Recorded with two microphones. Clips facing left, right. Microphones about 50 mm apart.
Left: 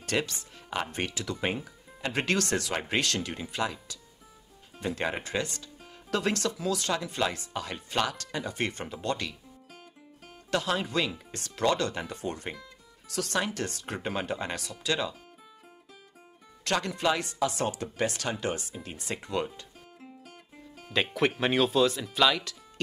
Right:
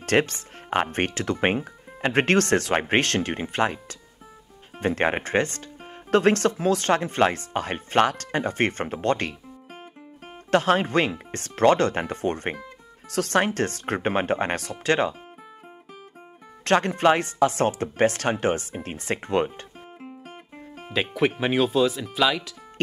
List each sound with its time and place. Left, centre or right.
0.0 s music: right
0.9 s speech: right
16.6 s speech: right
17.9 s music: right
20.9 s speech: centre